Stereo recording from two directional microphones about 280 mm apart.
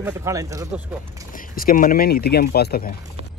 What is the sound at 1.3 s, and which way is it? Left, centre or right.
Speech, left.